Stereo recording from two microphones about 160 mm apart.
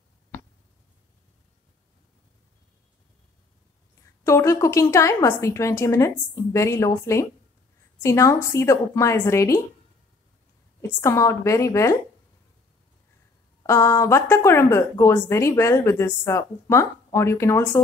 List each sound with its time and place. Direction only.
4.2 s a woman's voice: 15° left (ahead or behind)
11.0 s a woman's voice: 20° left (ahead or behind)
13.6 s a woman's voice: 20° left (ahead or behind)